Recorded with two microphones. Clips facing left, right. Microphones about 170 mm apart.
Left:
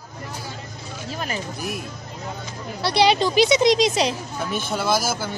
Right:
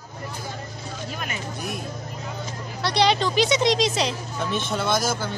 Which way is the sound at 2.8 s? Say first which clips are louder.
Left 3 dB; 10° left (ahead or behind).